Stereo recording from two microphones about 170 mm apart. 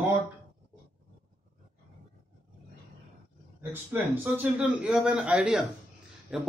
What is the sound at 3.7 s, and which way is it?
A man's voice, 10° right (ahead or behind).